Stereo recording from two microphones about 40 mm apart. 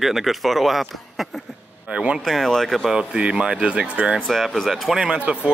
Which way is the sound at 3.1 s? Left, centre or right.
Right.